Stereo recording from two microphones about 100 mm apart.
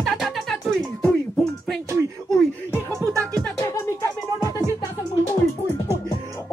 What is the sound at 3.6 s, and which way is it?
Music, 30° left (ahead or behind).